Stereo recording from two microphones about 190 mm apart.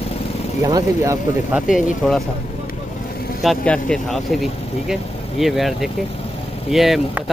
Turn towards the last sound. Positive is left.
turn(degrees=0)  # may be behind; listen again after turning